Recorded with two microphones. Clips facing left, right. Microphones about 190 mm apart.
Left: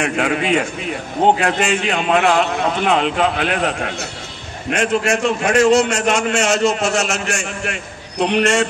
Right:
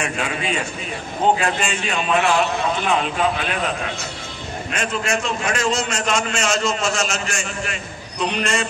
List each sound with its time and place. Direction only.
0.0 s a man's voice: 65° left (ahead or behind)